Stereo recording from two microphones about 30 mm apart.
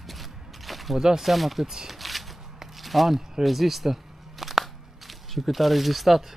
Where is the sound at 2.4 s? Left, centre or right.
Centre.